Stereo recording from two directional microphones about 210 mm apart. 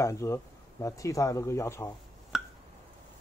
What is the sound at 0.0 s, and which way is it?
Speech, 15° left (ahead or behind).